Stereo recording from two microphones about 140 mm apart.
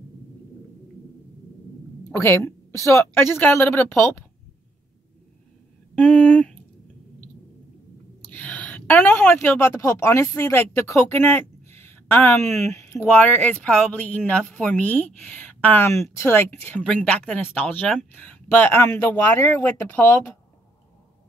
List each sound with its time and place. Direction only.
2.0 s a woman's voice: 20° left (ahead or behind)
5.9 s a sound: 10° left (ahead or behind)
8.2 s a woman's voice: 10° left (ahead or behind)